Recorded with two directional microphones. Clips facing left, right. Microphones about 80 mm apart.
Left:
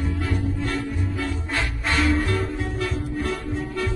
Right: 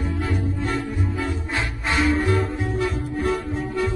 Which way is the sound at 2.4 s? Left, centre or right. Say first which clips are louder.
Right 3 dB; centre.